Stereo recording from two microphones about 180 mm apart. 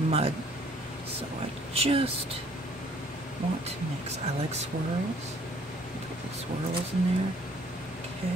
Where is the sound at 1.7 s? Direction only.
35° right (ahead or behind).